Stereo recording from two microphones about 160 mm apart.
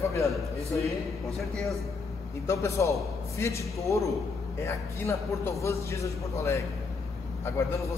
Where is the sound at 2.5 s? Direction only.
20° left (ahead or behind).